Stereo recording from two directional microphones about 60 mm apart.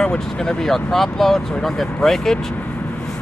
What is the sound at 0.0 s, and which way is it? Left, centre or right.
Speech, centre.